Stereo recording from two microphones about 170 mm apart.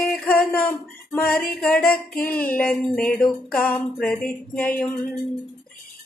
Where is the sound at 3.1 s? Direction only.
5° left (ahead or behind).